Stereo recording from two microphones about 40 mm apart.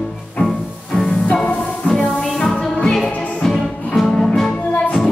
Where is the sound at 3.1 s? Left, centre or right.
Left.